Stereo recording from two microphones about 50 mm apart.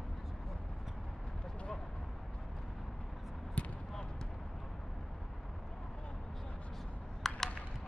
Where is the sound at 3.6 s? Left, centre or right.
Left.